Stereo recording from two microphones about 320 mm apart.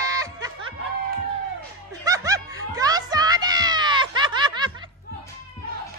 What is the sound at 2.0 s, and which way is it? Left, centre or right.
Music, centre.